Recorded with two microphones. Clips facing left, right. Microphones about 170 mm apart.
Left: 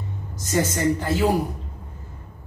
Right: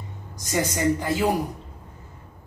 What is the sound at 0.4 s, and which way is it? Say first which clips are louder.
Speech: left 2 dB; 15° right (ahead or behind).